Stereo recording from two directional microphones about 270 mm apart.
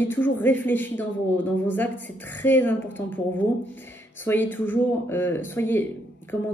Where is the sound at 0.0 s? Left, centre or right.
Centre.